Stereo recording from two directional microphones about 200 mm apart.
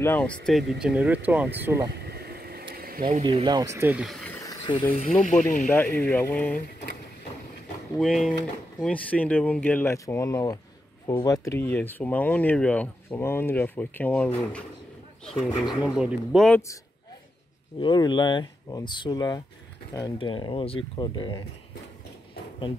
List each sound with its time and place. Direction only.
0.0 s speech: 10° left (ahead or behind); by 1.9 s 10° right (ahead or behind)
2.0 s a sound: 50° right (ahead or behind)
3.3 s speech: 20° right (ahead or behind)
4.0 s speech: centre (ahead or behind)
4.4 s a sound: 20° left (ahead or behind)
4.9 s speech: 30° left (ahead or behind)
5.7 s speech: 10° left (ahead or behind)
8.0 s speech: centre (ahead or behind)
17.7 s speech: 20° left (ahead or behind)